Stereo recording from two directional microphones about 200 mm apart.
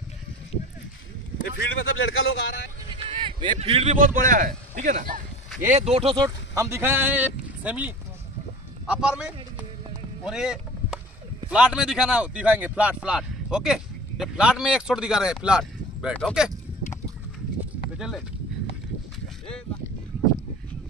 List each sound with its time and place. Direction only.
1.4 s speech: 70° left (ahead or behind)
3.1 s speech: 25° right (ahead or behind); by 9.7 s 5° right (ahead or behind)
10.2 s boat: 5° right (ahead or behind)
11.4 s speech: 5° right (ahead or behind)
17.9 s a sound: 5° right (ahead or behind)